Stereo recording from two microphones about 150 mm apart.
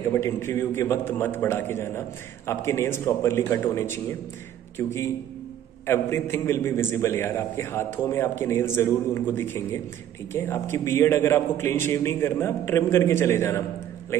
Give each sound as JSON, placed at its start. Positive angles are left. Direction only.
{"t": 0.1, "sound": "a man's voice", "side_deg": 15}